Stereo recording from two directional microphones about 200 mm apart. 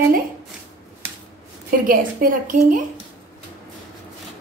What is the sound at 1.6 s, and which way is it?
A woman's voice, 45° right (ahead or behind).